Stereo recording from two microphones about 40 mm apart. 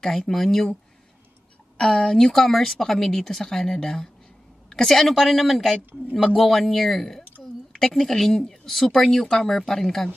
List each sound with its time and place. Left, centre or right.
0.0 s speech: centre
1.8 s speech: centre
4.6 s a sound: centre
4.9 s speech: centre
5.8 s a woman's voice: right
6.1 s speech: centre